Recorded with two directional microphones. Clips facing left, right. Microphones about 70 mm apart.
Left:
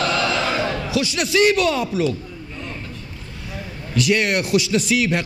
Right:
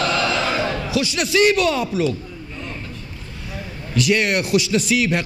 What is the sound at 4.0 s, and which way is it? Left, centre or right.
A man's voice, centre.